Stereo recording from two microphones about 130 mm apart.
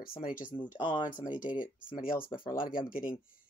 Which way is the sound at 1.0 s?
85° left.